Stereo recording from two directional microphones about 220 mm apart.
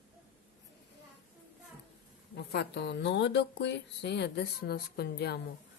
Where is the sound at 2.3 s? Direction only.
50° left (ahead or behind).